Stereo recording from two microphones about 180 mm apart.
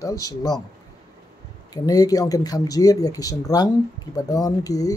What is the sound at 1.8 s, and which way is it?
Speech, 20° left (ahead or behind).